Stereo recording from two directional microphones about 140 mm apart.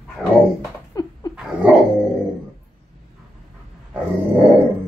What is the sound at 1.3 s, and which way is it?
Dog, 10° right (ahead or behind).